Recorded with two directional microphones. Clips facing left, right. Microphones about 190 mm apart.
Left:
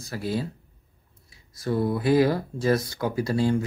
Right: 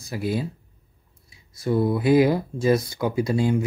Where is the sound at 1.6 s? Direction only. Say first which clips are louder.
Right 3 dB; 15° right (ahead or behind).